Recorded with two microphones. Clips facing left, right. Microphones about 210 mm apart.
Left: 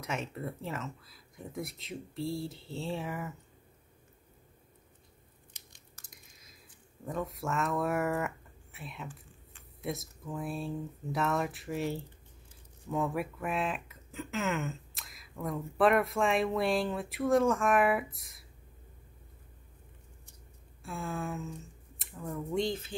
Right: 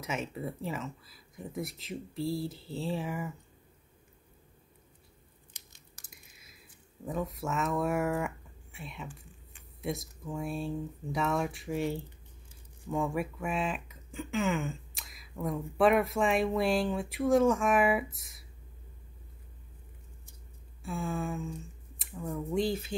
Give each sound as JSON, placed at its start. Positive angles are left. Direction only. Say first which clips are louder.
{"t": 0.0, "sound": "speech", "louder": "right 1 dB", "side_deg": 0}
{"t": 6.0, "sound": "biting", "louder": "even", "side_deg": -15}
{"t": 7.1, "sound": "speech", "louder": "right 1 dB", "side_deg": 0}
{"t": 20.8, "sound": "speech", "louder": "right 3 dB", "side_deg": 0}